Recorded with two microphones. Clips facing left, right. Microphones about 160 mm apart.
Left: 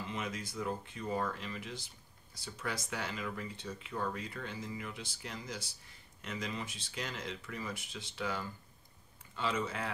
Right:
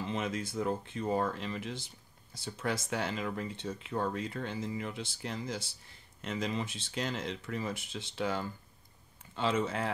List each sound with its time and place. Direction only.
0.0 s speech: 25° right (ahead or behind)